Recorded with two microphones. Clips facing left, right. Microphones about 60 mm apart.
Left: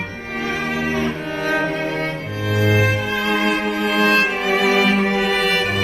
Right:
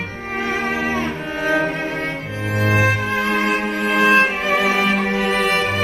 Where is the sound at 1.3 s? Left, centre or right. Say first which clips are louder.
Right 4 dB; centre.